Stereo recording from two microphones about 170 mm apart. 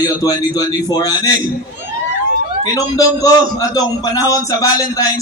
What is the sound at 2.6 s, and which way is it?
A man's voice, 20° left (ahead or behind).